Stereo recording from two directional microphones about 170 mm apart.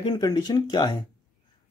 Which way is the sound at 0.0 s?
25° left (ahead or behind).